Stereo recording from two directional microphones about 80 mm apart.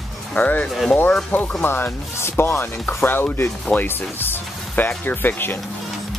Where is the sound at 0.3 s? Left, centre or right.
Left.